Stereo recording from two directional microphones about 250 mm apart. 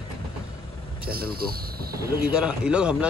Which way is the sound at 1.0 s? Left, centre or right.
Right.